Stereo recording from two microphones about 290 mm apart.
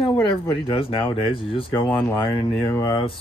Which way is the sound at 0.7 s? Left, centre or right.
Centre.